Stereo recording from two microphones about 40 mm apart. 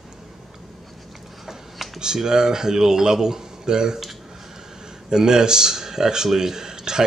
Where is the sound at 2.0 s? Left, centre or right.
Centre.